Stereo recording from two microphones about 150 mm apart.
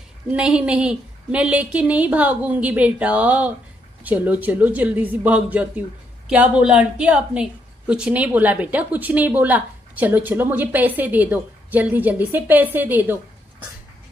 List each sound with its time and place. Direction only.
0.3 s a woman's voice: 5° right (ahead or behind)